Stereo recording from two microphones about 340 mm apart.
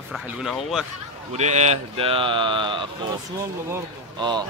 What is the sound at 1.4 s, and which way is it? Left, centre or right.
Speech, centre.